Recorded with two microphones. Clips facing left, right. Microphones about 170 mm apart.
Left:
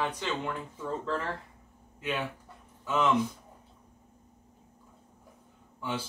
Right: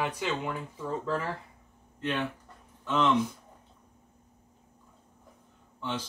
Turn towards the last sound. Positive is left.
turn(degrees=5)  # may be behind; listen again after turning